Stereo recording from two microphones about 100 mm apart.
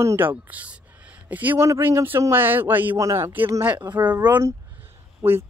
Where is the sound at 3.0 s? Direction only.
30° right (ahead or behind).